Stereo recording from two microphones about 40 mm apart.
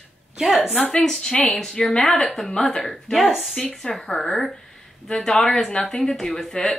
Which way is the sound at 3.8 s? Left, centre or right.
Centre.